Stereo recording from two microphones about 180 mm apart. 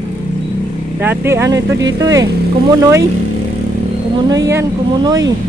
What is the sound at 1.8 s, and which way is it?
Speech, 20° right (ahead or behind).